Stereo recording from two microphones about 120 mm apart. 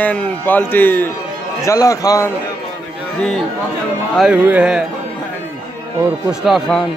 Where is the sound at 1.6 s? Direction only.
25° left (ahead or behind).